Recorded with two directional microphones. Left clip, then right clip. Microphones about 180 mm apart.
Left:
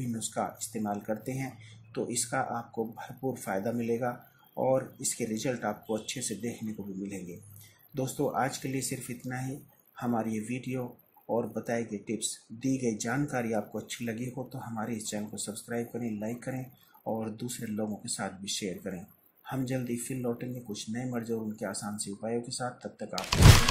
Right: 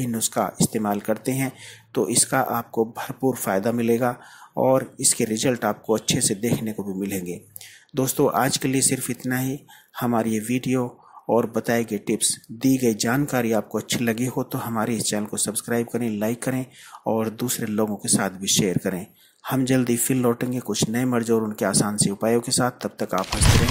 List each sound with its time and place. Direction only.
0.2 s speech: 30° right (ahead or behind)
7.9 s speech: 35° right (ahead or behind)